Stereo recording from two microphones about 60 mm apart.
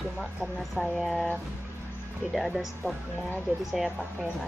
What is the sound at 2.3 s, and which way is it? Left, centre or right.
Speech, centre.